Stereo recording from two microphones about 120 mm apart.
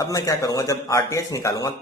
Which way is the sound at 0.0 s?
30° left (ahead or behind).